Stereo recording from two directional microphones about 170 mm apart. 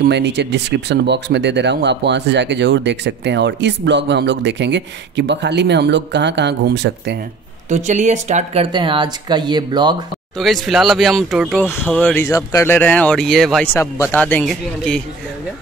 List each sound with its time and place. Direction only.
0.0 s speech: 90° right
7.7 s speech: 45° right (ahead or behind)
8.7 s speech: 25° right (ahead or behind)
10.3 s speech: centre (ahead or behind)
11.6 s speech: 10° left (ahead or behind)